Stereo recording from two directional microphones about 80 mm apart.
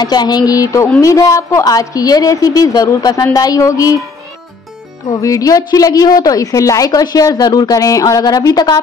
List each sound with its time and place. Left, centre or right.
0.0 s a woman's voice: left
5.2 s a woman's voice: left